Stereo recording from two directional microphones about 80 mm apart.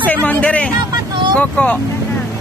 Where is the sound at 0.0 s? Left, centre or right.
Centre.